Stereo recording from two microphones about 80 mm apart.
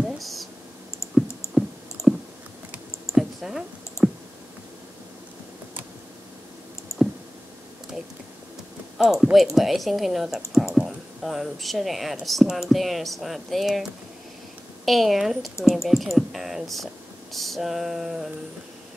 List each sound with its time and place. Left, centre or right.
0.0 s a sound: centre
1.6 s clicking: centre
2.0 s clicking: left
3.1 s a sound: centre
7.0 s clicking: centre
8.9 s speech: centre
14.9 s speech: centre